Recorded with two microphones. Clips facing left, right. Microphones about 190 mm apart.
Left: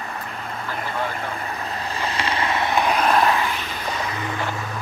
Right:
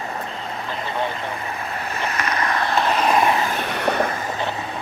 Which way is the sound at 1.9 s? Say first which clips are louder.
Even; 30° left (ahead or behind).